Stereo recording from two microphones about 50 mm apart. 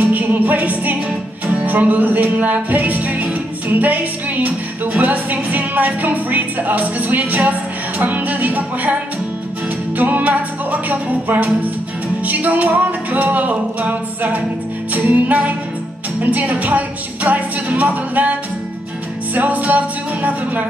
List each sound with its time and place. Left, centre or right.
0.0 s music: right